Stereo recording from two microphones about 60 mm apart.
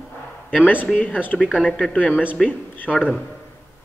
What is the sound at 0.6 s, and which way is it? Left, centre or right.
A man's voice, left.